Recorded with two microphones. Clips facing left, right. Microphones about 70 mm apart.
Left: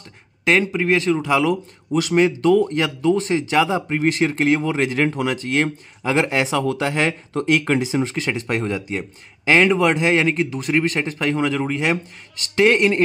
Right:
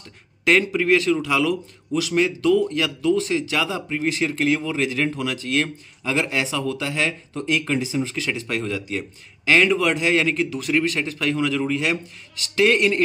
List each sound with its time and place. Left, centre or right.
0.5 s speech: centre; by 1.6 s left
1.9 s speech: left
2.1 s speech: left